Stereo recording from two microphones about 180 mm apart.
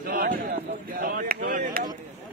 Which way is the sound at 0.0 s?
55° right (ahead or behind).